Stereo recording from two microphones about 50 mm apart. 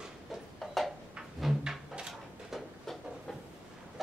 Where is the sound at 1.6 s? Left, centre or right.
Centre.